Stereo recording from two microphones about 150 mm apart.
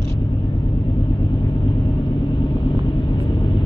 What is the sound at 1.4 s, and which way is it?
Vehicle, 30° left (ahead or behind).